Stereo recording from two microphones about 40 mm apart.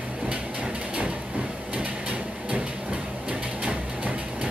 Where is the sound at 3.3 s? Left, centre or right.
Right.